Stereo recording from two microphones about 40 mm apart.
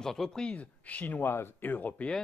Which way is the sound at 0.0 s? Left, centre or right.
Centre.